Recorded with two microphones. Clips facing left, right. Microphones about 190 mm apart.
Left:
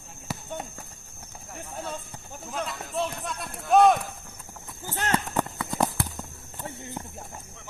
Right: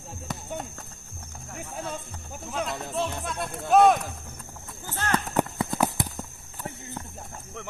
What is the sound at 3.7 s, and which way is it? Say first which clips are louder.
Clip-clop: even; centre (ahead or behind).